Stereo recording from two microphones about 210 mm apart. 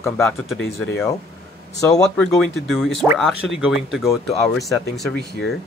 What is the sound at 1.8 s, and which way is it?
Speech, 15° left (ahead or behind).